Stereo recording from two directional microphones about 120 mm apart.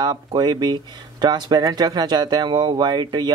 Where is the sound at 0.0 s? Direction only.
35° right (ahead or behind).